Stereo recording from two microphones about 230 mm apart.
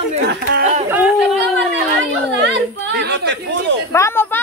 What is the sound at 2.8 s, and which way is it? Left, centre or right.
Speech, right.